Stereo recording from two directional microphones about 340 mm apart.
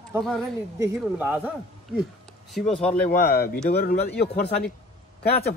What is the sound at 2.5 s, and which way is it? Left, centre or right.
Speech, centre.